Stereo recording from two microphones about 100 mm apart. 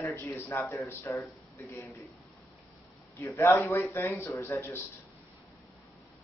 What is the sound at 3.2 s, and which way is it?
Speech, 25° left (ahead or behind).